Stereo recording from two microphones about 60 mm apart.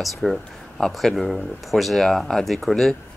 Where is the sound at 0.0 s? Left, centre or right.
Centre.